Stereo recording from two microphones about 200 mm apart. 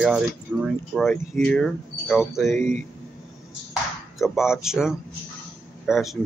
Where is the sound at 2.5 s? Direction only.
40° right (ahead or behind).